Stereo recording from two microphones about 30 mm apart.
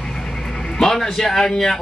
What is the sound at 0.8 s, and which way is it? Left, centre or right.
Speech, centre.